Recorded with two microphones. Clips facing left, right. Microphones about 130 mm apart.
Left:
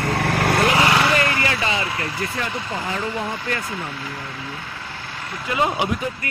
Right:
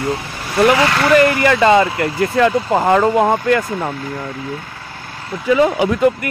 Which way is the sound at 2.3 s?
80° right.